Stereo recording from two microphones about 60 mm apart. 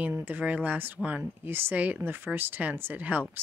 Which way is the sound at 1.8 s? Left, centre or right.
Right.